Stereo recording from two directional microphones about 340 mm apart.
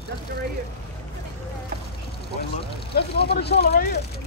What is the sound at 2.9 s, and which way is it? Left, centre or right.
Speech, left.